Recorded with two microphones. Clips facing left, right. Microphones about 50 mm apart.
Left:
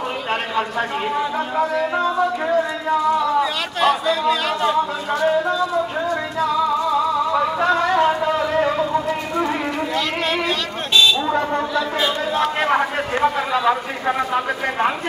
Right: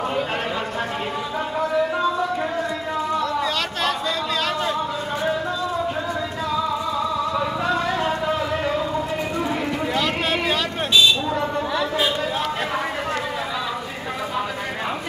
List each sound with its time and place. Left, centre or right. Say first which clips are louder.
3.3 s chatter: left 4 dB; centre
7.6 s a sound: left 8 dB; left
12.6 s a man's voice: left 5 dB; left